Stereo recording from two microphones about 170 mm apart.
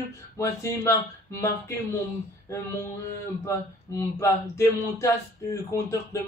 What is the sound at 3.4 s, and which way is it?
Speech, 15° left (ahead or behind).